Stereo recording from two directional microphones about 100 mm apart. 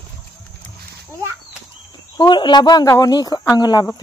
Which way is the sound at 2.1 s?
50° left (ahead or behind).